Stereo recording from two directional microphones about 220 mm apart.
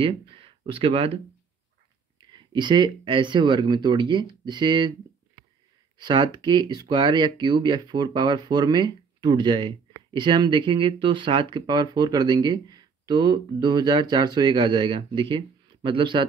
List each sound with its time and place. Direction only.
0.0 s speech: 25° right (ahead or behind)
5.9 s speech: 20° right (ahead or behind)